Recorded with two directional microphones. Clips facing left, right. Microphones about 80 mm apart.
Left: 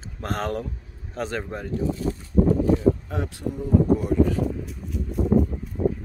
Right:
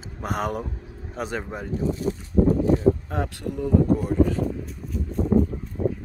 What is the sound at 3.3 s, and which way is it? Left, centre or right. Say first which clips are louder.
Speech: right 1 dB; right.